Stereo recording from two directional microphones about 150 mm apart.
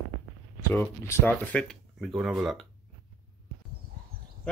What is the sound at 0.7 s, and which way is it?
Speech, 15° left (ahead or behind).